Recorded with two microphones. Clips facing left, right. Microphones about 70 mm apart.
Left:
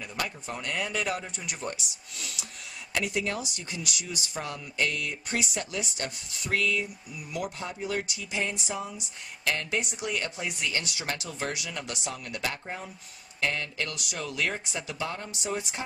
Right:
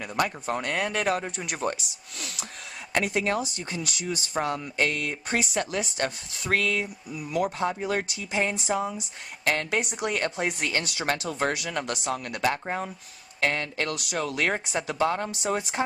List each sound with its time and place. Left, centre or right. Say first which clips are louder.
0.0 s speech: right 7 dB; right
9.5 s speech: right 4 dB; right